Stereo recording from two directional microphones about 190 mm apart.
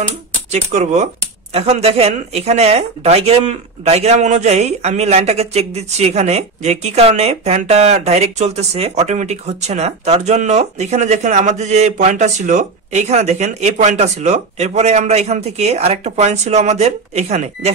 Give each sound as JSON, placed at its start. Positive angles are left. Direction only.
{"t": 0.5, "sound": "speech", "side_deg": -35}